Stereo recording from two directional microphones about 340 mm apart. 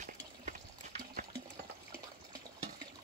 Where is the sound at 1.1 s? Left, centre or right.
Right.